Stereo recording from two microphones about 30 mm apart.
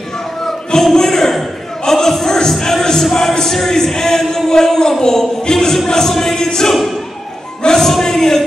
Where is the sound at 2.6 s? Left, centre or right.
Centre.